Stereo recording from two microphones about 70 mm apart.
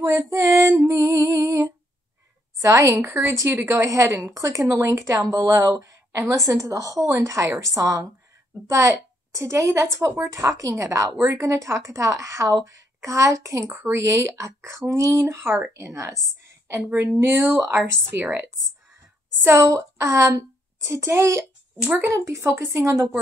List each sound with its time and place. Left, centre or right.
0.0 s a woman's voice: right
0.8 s music: right
2.6 s speech: right
3.6 s a woman's voice: right
13.7 s a woman's voice: right
17.2 s speech: right
19.5 s a child's voice: right